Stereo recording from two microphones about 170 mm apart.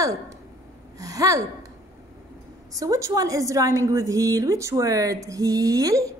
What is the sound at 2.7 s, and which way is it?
A woman's voice, 20° right (ahead or behind).